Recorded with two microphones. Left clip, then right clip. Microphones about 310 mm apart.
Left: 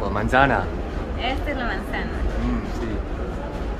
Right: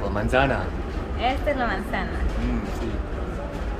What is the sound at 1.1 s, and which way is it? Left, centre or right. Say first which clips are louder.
Speech: right 3 dB; centre.